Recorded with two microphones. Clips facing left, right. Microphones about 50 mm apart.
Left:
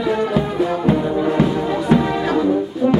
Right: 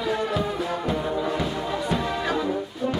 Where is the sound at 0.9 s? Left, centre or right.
Left.